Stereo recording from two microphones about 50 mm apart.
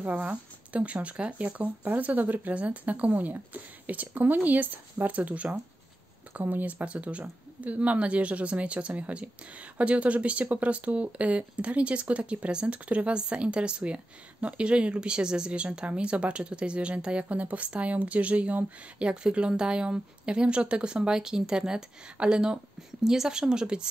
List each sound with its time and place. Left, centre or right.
0.0 s speech: right; by 23.9 s centre